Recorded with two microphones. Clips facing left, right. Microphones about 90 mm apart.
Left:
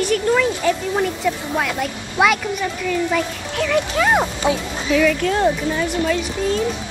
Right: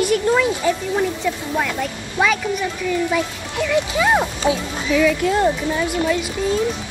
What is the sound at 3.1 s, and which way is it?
Speech, 15° right (ahead or behind).